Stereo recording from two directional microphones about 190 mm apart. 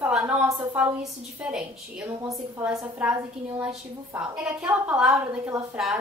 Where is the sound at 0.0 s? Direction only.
10° right (ahead or behind).